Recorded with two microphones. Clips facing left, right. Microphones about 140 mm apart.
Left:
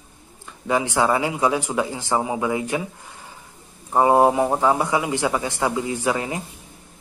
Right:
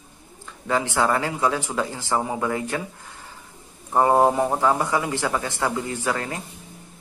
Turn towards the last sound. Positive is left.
turn(degrees=15)  # may be behind; listen again after turning